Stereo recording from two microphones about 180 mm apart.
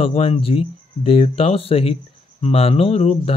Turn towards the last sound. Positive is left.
turn(degrees=35)  # may be behind; listen again after turning